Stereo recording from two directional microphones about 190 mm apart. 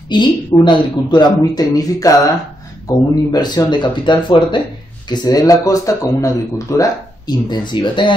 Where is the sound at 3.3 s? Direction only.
20° left (ahead or behind).